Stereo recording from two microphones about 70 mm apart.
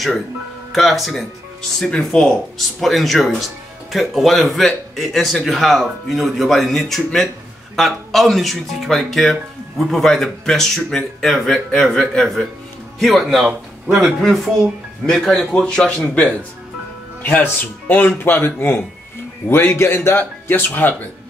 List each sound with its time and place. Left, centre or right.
0.7 s speech: centre
17.2 s speech: left